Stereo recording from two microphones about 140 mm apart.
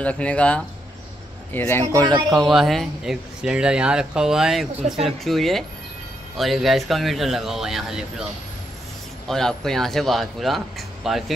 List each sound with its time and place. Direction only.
0.0 s a man's voice: 10° left (ahead or behind)
2.2 s speech: centre (ahead or behind)
9.3 s speech: 5° left (ahead or behind)